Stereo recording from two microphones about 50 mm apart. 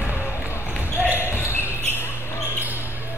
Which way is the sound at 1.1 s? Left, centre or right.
Left.